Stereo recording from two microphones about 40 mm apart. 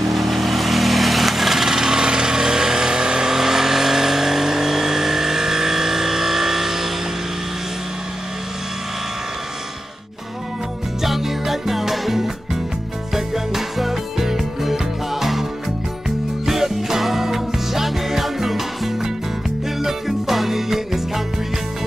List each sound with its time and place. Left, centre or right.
0.1 s vehicle: centre
11.0 s music: centre
16.4 s music: centre